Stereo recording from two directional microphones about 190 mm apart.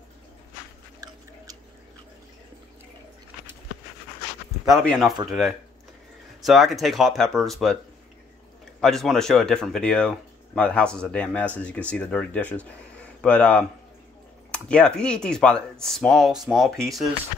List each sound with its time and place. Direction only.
1.0 s chewing: 20° right (ahead or behind)
4.6 s speech: centre (ahead or behind)
6.4 s speech: centre (ahead or behind)
8.8 s speech: centre (ahead or behind)